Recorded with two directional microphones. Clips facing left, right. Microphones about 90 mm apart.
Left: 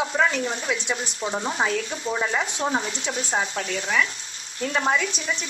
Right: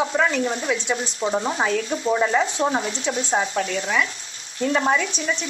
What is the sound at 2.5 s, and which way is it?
Speech, 25° right (ahead or behind).